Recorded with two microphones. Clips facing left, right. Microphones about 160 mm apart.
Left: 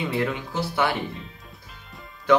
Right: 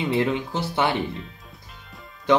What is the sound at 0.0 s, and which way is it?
Speech, 20° right (ahead or behind).